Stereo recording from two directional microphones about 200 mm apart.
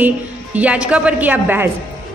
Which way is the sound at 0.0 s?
5° right (ahead or behind).